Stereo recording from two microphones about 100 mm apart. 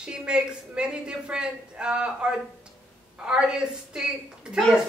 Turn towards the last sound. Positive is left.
turn(degrees=-5)  # may be behind; listen again after turning